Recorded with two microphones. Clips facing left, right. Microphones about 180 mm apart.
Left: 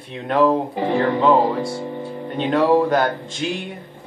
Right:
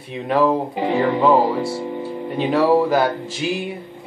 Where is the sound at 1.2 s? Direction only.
5° right (ahead or behind).